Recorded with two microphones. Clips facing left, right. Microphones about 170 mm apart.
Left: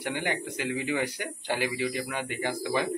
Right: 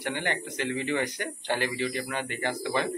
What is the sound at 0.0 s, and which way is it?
Speech, 10° left (ahead or behind).